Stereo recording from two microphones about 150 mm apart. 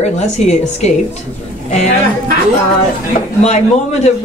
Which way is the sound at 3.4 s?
45° left (ahead or behind).